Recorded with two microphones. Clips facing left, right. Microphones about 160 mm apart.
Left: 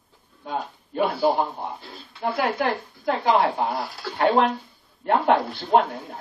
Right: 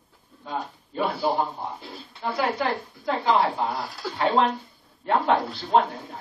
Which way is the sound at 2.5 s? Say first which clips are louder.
Left 2 dB; 55° left (ahead or behind).